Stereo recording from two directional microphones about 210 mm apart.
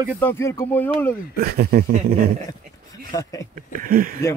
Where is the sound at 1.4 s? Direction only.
45° right (ahead or behind).